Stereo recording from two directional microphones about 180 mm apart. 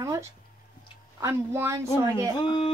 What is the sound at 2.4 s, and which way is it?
Speech, 25° left (ahead or behind).